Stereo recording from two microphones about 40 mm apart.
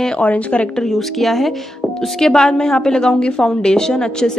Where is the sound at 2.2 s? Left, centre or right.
Centre.